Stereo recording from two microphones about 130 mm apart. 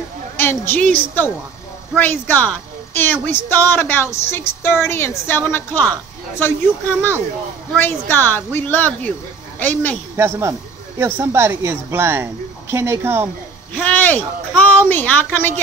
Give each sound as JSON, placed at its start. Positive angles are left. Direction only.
{"t": 0.4, "sound": "a woman's voice", "side_deg": 15}
{"t": 2.0, "sound": "a woman's voice", "side_deg": 15}
{"t": 10.1, "sound": "a woman's voice", "side_deg": -20}
{"t": 13.7, "sound": "a woman's voice", "side_deg": 15}